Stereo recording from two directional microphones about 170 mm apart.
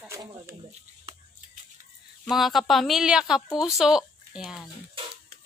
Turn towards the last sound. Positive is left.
turn(degrees=0)  # may be behind; listen again after turning